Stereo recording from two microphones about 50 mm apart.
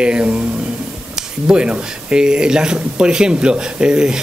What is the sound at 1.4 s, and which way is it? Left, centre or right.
Speech, centre.